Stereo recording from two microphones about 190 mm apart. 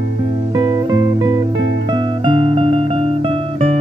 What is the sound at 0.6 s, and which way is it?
Music, 20° right (ahead or behind).